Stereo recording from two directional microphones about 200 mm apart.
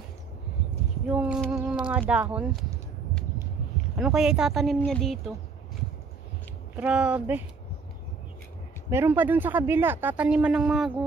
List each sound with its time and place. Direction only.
1.0 s a sound: 5° right (ahead or behind)
3.9 s speech: 5° right (ahead or behind)
6.7 s speech: 5° right (ahead or behind)
8.9 s speech: 10° right (ahead or behind)